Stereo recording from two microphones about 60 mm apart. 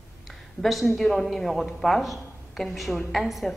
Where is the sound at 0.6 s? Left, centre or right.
Centre.